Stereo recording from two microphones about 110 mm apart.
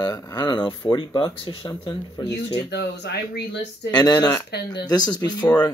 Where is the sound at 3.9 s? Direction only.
35° left (ahead or behind).